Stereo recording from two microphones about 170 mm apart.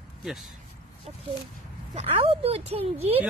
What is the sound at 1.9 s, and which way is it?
Speech, 35° right (ahead or behind).